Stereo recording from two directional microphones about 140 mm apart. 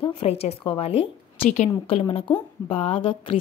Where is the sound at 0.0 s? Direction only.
40° left (ahead or behind).